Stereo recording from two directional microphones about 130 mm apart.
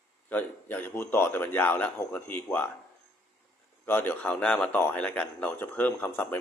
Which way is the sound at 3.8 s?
15° left (ahead or behind).